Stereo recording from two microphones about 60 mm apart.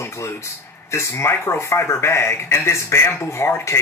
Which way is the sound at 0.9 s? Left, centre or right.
Left.